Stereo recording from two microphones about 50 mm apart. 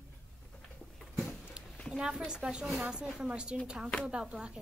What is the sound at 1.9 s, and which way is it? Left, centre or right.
A woman's voice, centre.